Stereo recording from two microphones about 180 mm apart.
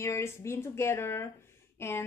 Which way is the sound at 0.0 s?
15° left (ahead or behind).